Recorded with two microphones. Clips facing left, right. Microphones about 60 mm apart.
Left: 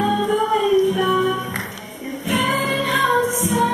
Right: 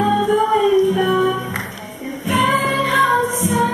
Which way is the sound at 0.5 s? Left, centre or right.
Centre.